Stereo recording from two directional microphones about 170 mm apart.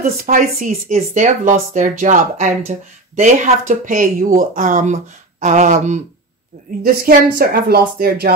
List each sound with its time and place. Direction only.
0.0 s speech: 55° right (ahead or behind)
6.8 s a woman's voice: 60° right (ahead or behind)